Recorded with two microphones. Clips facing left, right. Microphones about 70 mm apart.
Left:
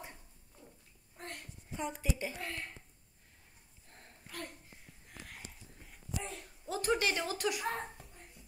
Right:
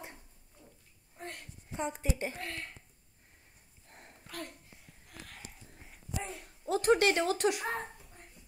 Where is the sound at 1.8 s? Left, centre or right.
Right.